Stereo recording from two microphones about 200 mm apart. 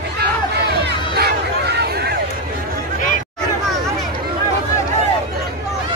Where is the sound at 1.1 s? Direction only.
55° right (ahead or behind).